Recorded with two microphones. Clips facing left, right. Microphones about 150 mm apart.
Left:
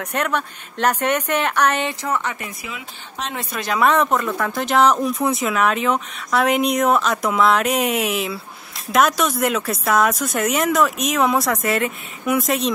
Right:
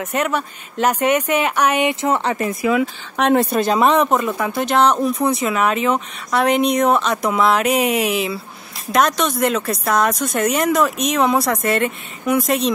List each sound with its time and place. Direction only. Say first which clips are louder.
0.0 s speech: right 2 dB; 10° right (ahead or behind); by 2.3 s 25° right (ahead or behind)
2.3 s speech: right 13 dB; 40° right (ahead or behind)
2.7 s speech: right 16 dB; 60° right (ahead or behind)
3.3 s speech: right 8 dB; 30° right (ahead or behind)
3.8 s speech: left 1 dB; 15° right (ahead or behind)
4.5 s speech: even; centre (ahead or behind)